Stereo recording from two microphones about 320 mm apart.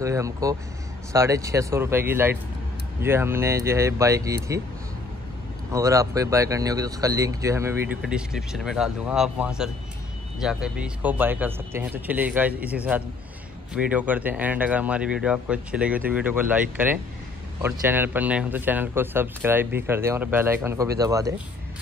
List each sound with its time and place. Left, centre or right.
0.0 s speech: centre
5.7 s speech: centre